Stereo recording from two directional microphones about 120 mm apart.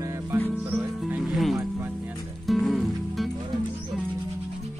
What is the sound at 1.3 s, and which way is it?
Music, centre (ahead or behind).